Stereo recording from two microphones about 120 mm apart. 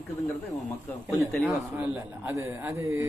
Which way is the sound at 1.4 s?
15° right (ahead or behind).